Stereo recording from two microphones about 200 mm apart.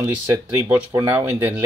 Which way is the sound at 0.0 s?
15° right (ahead or behind).